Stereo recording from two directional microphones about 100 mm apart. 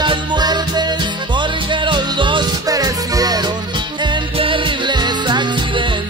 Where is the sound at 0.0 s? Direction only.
50° right (ahead or behind).